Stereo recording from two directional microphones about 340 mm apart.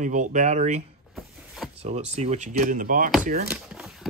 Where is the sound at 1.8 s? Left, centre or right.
Centre.